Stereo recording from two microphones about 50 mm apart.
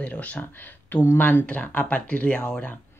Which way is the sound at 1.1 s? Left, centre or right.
Left.